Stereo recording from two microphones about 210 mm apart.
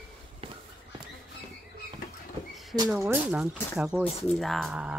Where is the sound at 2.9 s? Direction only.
10° right (ahead or behind).